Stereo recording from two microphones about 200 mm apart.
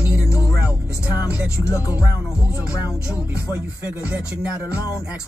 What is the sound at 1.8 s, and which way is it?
Music, 5° right (ahead or behind).